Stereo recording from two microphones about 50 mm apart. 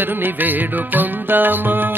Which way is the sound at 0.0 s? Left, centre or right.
Right.